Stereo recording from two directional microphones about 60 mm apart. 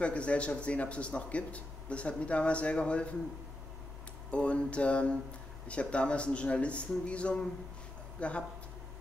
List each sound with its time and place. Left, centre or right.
0.0 s a man's voice: left
4.3 s a man's voice: centre